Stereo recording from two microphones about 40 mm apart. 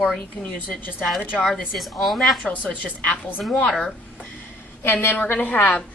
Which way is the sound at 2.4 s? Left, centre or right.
Left.